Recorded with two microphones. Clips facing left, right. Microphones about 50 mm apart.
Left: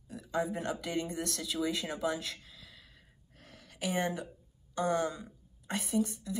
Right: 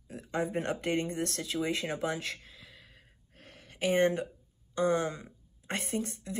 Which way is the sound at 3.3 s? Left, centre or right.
Right.